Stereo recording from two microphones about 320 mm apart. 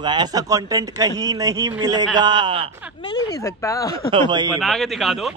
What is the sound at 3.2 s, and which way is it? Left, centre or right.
Speech, centre.